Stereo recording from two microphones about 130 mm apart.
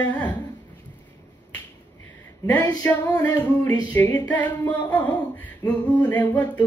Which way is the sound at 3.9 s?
15° left (ahead or behind).